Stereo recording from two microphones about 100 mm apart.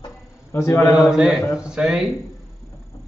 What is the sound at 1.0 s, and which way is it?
A man's voice, 5° right (ahead or behind).